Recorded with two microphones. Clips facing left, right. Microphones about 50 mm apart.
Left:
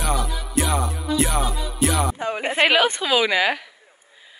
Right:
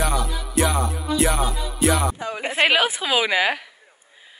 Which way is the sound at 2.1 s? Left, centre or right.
Left.